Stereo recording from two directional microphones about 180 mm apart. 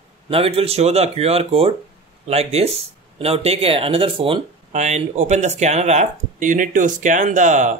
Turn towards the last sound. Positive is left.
turn(degrees=-45)  # may be behind; listen again after turning